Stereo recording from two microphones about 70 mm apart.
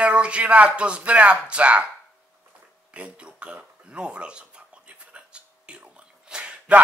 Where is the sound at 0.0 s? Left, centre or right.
Centre.